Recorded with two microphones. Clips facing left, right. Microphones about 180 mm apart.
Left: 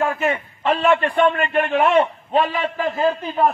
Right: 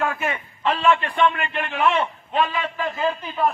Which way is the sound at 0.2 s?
50° left (ahead or behind).